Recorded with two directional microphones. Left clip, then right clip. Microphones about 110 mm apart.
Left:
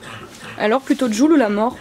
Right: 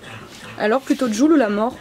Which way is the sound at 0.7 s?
15° left (ahead or behind).